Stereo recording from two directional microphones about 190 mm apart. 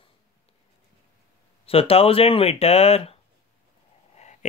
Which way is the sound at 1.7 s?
30° left (ahead or behind).